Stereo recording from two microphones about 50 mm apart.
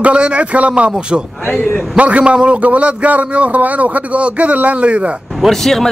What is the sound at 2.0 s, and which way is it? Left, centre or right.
A man's voice, right.